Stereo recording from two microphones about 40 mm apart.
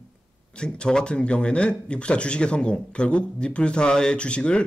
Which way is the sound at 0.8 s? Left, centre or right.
Left.